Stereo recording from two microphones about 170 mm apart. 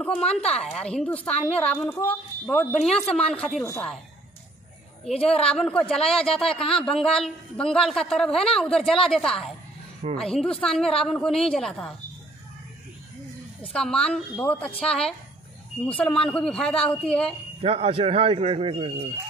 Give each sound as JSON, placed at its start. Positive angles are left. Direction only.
{"t": 0.3, "sound": "a woman's voice", "side_deg": 5}
{"t": 3.6, "sound": "a woman's voice", "side_deg": 15}
{"t": 5.3, "sound": "a woman's voice", "side_deg": 5}
{"t": 13.6, "sound": "a woman's voice", "side_deg": 5}
{"t": 17.6, "sound": "a man's voice", "side_deg": -35}